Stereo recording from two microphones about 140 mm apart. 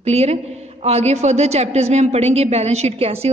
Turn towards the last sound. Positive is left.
turn(degrees=-45)  # may be behind; listen again after turning